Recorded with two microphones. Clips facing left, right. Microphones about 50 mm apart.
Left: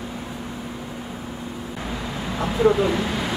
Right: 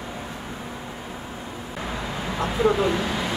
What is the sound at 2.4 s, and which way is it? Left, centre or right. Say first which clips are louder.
Speech: left 2 dB; centre.